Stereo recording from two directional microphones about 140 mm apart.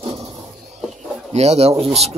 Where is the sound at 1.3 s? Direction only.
50° right (ahead or behind).